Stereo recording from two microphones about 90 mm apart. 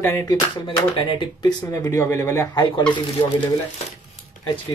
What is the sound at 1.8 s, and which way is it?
Speech, 30° left (ahead or behind).